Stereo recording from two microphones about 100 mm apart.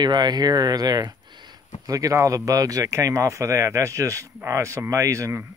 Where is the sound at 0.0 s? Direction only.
45° right (ahead or behind).